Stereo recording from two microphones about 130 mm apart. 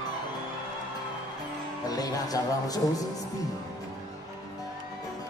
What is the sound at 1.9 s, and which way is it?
Speech, 30° left (ahead or behind).